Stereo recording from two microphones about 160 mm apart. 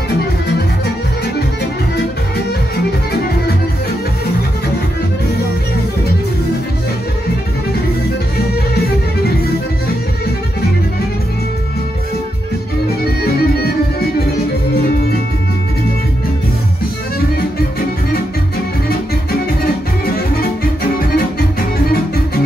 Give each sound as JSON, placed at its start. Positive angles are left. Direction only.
{"t": 8.7, "sound": "music", "side_deg": 85}
{"t": 13.2, "sound": "music", "side_deg": 75}
{"t": 17.6, "sound": "music", "side_deg": 70}
{"t": 20.2, "sound": "music", "side_deg": 70}